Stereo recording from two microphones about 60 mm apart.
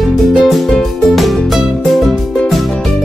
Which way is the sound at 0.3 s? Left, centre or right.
Centre.